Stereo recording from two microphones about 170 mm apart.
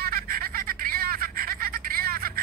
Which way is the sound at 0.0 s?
60° right (ahead or behind).